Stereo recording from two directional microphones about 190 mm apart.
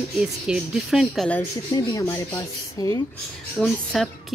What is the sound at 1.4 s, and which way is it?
Speech, 20° left (ahead or behind).